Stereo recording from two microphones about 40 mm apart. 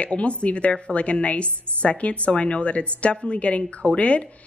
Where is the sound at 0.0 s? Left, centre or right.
Left.